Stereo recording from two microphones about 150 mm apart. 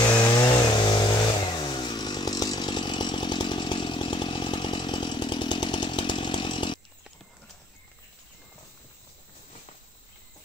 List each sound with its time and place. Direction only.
0.0 s vehicle: 30° left (ahead or behind)